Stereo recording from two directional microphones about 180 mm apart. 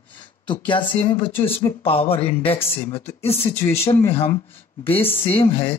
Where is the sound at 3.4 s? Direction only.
15° left (ahead or behind).